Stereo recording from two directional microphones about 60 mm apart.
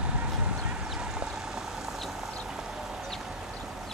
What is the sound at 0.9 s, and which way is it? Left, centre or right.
Vehicle, centre.